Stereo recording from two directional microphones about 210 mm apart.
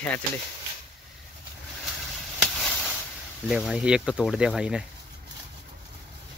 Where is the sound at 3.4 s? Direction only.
Centre (ahead or behind).